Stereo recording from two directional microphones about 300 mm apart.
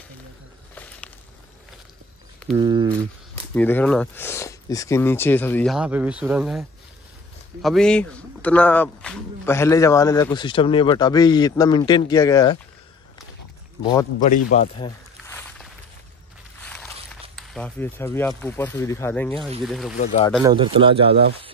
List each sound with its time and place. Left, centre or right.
2.5 s speech: centre
3.5 s speech: centre
7.6 s speech: centre
14.5 s speech: left
15.2 s walk: centre
17.4 s speech: centre
20.0 s speech: left
20.4 s speech: centre